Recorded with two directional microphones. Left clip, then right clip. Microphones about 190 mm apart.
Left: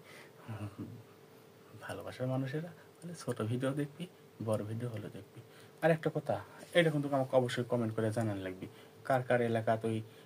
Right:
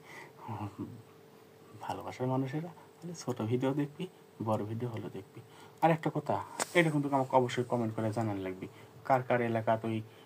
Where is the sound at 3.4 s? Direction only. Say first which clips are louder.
Right 4 dB; 30° left (ahead or behind).